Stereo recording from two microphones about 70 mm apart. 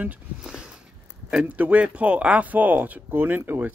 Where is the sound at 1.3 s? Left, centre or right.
Right.